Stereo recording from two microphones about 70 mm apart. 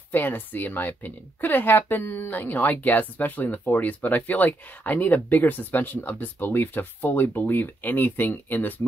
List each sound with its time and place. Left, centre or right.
0.1 s speech: left